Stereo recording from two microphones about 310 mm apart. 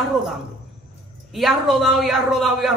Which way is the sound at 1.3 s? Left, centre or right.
Centre.